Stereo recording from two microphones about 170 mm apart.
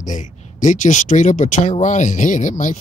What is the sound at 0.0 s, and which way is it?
Speech, 50° left (ahead or behind).